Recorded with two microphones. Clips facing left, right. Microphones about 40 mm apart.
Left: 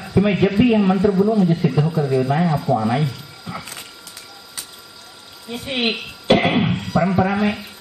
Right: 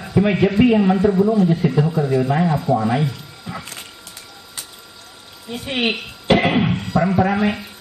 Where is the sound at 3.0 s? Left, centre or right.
Centre.